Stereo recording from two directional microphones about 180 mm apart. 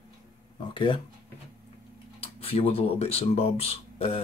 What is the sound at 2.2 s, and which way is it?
Speech, 30° left (ahead or behind).